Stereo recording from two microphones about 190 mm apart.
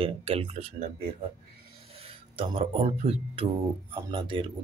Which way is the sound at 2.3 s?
30° right (ahead or behind).